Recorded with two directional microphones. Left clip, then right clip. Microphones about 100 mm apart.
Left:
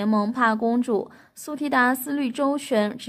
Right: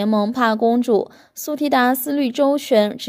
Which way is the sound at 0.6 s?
30° right (ahead or behind).